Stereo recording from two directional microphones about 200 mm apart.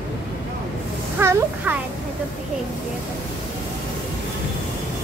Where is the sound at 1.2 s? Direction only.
10° right (ahead or behind).